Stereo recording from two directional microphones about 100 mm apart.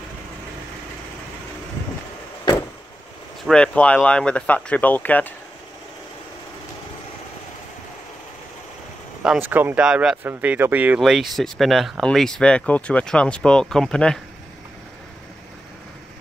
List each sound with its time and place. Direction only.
3.4 s speech: 10° left (ahead or behind)
9.4 s speech: 20° right (ahead or behind)
9.8 s speech: 5° right (ahead or behind)
10.2 s speech: 20° right (ahead or behind)
11.0 s speech: centre (ahead or behind)